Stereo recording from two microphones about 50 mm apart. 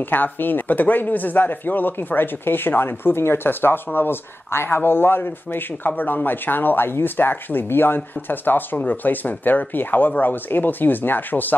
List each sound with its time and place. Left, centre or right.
0.1 s speech: left